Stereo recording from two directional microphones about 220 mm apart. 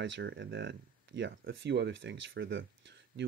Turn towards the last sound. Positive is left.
turn(degrees=-55)  # may be behind; listen again after turning